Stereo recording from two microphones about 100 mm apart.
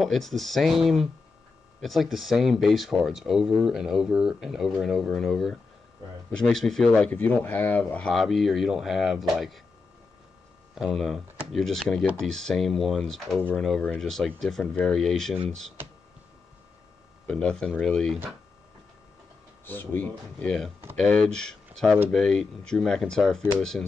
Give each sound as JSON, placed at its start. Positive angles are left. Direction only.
{"t": 0.0, "sound": "speech", "side_deg": 0}
{"t": 7.1, "sound": "speech", "side_deg": 15}
{"t": 8.1, "sound": "speech", "side_deg": 0}
{"t": 10.7, "sound": "speech", "side_deg": 0}
{"t": 17.3, "sound": "speech", "side_deg": 10}
{"t": 19.6, "sound": "speech", "side_deg": 20}